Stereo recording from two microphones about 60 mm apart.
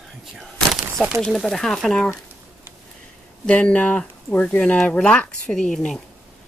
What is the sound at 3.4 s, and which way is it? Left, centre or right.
Speech, centre.